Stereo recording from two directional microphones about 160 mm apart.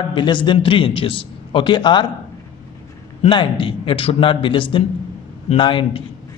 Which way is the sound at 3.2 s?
30° left (ahead or behind).